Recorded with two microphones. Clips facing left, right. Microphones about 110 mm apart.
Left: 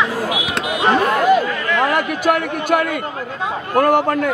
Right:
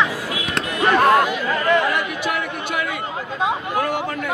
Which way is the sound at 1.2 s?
45° left (ahead or behind).